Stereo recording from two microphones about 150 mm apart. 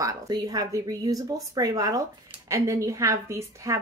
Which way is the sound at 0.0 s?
25° right (ahead or behind).